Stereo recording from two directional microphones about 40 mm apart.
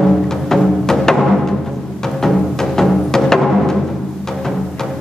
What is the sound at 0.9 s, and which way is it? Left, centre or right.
Timpani, centre.